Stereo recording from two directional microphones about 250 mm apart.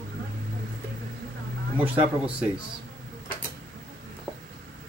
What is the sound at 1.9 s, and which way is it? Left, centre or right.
Speech, centre.